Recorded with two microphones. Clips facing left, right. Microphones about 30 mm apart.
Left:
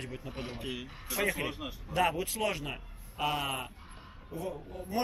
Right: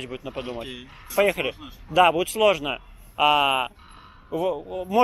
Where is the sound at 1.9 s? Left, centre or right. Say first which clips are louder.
Right 12 dB; right.